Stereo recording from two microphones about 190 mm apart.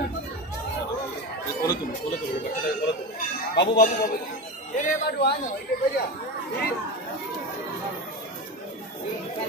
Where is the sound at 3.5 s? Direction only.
60° left (ahead or behind).